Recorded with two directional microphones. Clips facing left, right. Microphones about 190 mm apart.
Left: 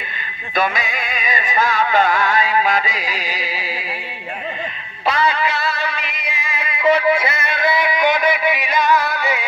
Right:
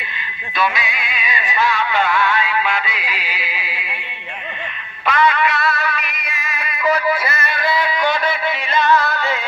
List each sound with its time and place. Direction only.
0.6 s music: 45° left (ahead or behind)
5.0 s music: 30° left (ahead or behind); by 9.4 s 15° left (ahead or behind)